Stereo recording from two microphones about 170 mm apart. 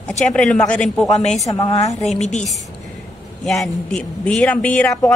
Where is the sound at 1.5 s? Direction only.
25° left (ahead or behind).